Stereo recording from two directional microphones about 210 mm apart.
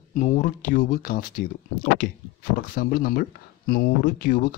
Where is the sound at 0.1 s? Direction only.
35° left (ahead or behind).